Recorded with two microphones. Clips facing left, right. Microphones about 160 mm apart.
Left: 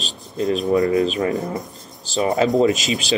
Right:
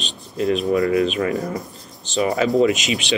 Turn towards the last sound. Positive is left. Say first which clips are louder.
# even
turn(degrees=40)  # may be behind; listen again after turning